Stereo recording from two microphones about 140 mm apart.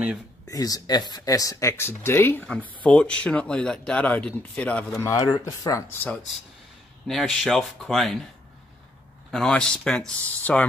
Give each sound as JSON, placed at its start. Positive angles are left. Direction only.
{"t": 0.5, "sound": "speech", "side_deg": 25}
{"t": 5.1, "sound": "speech", "side_deg": 25}
{"t": 7.1, "sound": "speech", "side_deg": 0}
{"t": 9.3, "sound": "speech", "side_deg": 5}